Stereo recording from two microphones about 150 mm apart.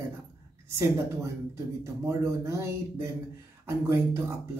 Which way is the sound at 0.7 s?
20° right (ahead or behind).